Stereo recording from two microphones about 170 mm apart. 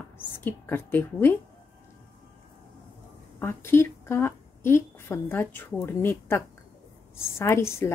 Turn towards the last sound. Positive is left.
turn(degrees=15)  # may be behind; listen again after turning